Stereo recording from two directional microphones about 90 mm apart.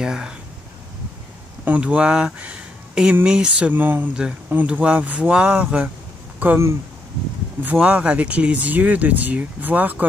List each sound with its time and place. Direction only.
0.0 s speech: 5° right (ahead or behind)
1.6 s speech: 15° right (ahead or behind)